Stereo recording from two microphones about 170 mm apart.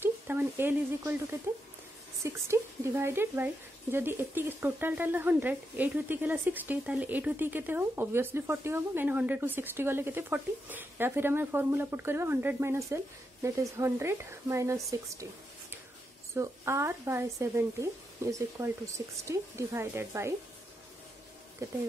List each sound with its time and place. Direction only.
0.0 s speech: 10° right (ahead or behind)
16.3 s speech: 15° right (ahead or behind)
21.6 s speech: 20° right (ahead or behind)